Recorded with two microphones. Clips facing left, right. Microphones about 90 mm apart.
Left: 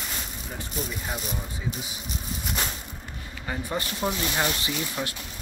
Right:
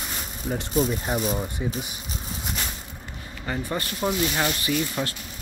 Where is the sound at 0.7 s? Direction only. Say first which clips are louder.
Right 9 dB; 30° right (ahead or behind).